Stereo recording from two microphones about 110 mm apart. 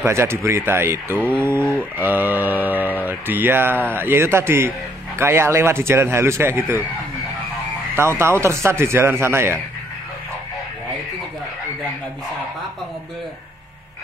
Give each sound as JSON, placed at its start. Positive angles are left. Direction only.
{"t": 0.0, "sound": "speech", "side_deg": -25}
{"t": 7.9, "sound": "speech", "side_deg": -20}